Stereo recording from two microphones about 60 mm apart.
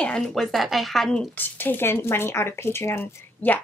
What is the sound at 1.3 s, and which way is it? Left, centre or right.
Speech, left.